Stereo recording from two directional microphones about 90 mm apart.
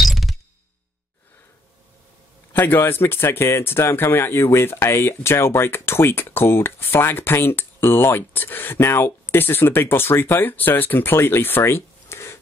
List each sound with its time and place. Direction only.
0.0 s music: centre (ahead or behind)
2.5 s speech: 25° left (ahead or behind)